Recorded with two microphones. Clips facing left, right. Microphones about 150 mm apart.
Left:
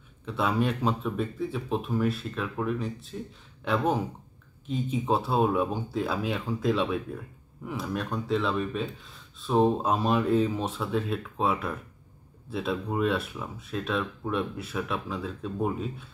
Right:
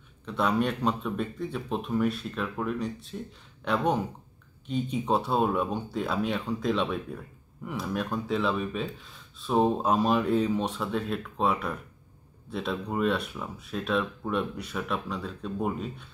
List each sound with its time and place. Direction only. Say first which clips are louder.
0.2 s speech: even; 5° left (ahead or behind)